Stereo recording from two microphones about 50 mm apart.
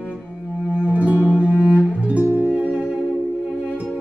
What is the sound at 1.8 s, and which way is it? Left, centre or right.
Bowed string instrument, right.